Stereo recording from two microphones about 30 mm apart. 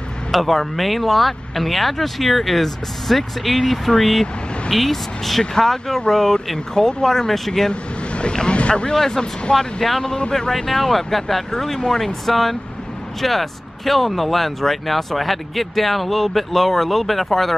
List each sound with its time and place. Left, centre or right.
0.3 s speech: centre
5.4 s speech: left
7.7 s speech: left
8.9 s speech: centre
10.7 s speech: centre